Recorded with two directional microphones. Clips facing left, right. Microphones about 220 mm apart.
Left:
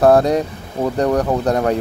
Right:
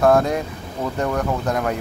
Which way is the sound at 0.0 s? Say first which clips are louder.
Left 4 dB; 35° left (ahead or behind).